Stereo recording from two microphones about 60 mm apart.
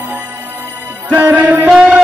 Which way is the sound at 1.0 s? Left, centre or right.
Right.